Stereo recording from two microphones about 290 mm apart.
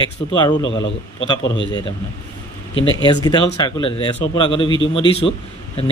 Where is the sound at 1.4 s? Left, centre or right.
Left.